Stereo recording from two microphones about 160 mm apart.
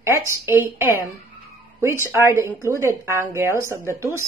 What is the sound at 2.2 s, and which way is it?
A woman's voice, 15° right (ahead or behind).